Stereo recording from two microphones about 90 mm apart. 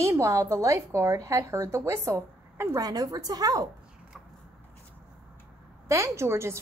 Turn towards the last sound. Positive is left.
turn(degrees=-30)  # may be behind; listen again after turning